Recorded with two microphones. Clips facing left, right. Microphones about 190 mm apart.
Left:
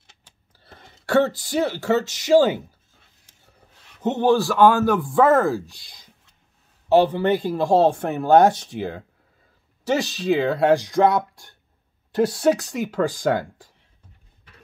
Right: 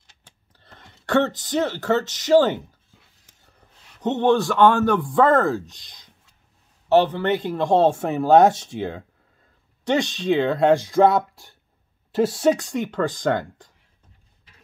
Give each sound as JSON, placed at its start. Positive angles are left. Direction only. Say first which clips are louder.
{"t": 0.6, "sound": "speech", "louder": "left 2 dB", "side_deg": 10}
{"t": 4.0, "sound": "a man's voice", "louder": "even", "side_deg": 10}